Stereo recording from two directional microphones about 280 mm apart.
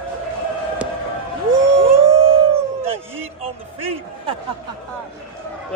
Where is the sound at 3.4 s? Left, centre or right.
Right.